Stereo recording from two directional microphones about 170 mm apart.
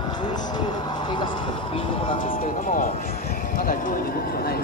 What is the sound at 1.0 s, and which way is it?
Speech, 30° left (ahead or behind).